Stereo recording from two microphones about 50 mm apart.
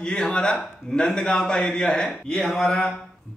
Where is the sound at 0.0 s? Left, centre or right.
Centre.